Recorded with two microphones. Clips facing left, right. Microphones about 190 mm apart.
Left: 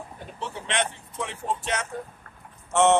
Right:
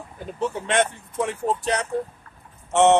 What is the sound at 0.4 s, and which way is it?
Speech, 50° right (ahead or behind).